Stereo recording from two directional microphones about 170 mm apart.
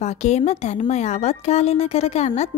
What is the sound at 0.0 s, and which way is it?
Speech, 45° left (ahead or behind).